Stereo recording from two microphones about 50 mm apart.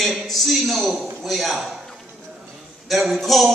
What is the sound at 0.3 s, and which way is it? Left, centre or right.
A man's voice, centre.